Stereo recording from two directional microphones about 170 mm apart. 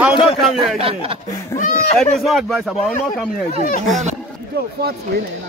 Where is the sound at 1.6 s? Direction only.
50° left (ahead or behind).